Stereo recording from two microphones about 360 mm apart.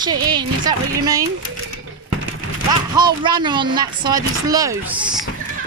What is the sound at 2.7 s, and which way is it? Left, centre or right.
Speech, centre.